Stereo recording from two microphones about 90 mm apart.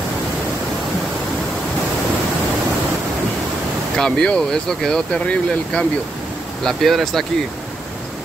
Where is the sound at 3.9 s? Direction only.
5° left (ahead or behind).